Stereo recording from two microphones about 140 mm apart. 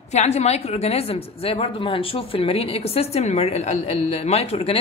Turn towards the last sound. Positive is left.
turn(degrees=50)  # may be behind; listen again after turning